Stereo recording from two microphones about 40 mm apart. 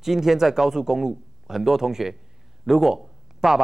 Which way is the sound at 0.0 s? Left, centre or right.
Centre.